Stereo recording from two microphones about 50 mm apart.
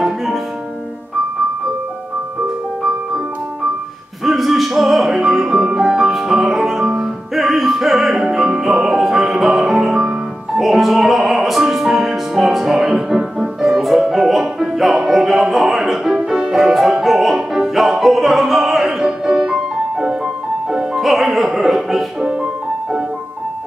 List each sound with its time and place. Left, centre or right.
0.0 s music: centre
4.2 s music: centre
12.9 s music: right
13.4 s music: centre